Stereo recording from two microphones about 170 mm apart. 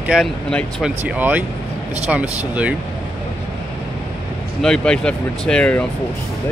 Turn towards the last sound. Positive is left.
turn(degrees=5)  # may be behind; listen again after turning